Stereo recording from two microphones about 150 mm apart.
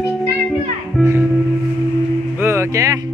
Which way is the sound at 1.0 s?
15° right (ahead or behind).